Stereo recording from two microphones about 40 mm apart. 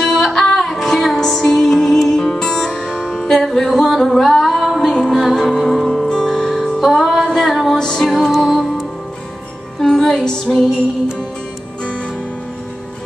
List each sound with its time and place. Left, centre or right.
0.0 s music: centre
2.1 s music: centre
6.8 s music: centre
7.7 s music: centre